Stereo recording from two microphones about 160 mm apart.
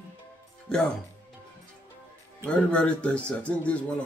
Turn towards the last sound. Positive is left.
turn(degrees=10)  # may be behind; listen again after turning